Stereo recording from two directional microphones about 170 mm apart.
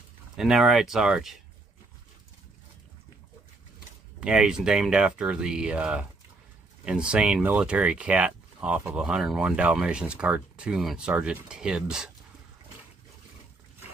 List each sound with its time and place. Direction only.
0.4 s speech: centre (ahead or behind)
4.2 s speech: 5° right (ahead or behind)